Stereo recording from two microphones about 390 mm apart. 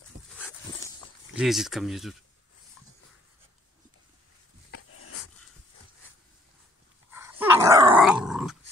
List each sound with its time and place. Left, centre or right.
0.4 s dog: centre
1.3 s speech: centre
4.6 s dog: left
7.1 s dog: centre